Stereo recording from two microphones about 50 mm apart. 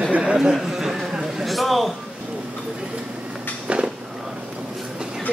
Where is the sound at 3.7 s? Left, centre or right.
Right.